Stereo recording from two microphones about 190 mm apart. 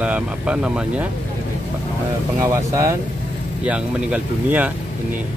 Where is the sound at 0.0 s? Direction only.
5° right (ahead or behind).